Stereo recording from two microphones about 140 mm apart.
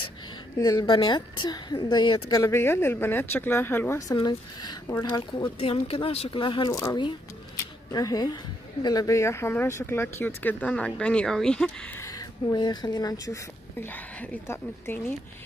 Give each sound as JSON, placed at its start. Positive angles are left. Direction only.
{"t": 0.6, "sound": "a woman's voice", "side_deg": 25}
{"t": 5.1, "sound": "speech", "side_deg": 35}
{"t": 6.7, "sound": "a woman's voice", "side_deg": 20}
{"t": 12.0, "sound": "speech", "side_deg": 25}